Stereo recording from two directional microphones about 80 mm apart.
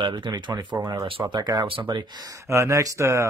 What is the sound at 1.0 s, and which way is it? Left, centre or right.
Speech, right.